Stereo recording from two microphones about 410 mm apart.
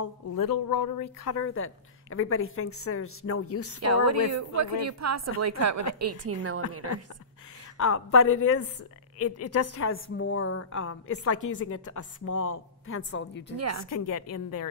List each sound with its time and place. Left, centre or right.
0.0 s a woman's voice: left
3.8 s a woman's voice: right
7.8 s a woman's voice: left
13.6 s a woman's voice: right
13.8 s a woman's voice: left